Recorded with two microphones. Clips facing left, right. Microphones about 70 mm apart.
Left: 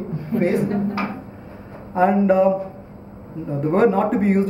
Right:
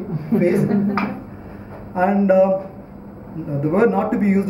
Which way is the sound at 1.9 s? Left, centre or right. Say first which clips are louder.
Right 1 dB; centre.